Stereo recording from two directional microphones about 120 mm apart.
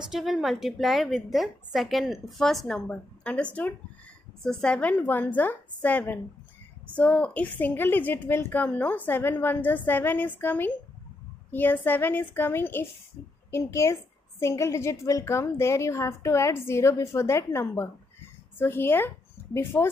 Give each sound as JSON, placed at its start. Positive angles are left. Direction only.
{"t": 0.1, "sound": "a woman's voice", "side_deg": 0}